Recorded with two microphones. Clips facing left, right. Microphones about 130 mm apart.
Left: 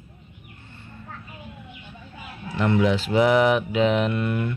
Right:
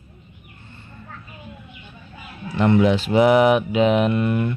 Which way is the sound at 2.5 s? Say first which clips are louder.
Right 4 dB; 25° right (ahead or behind).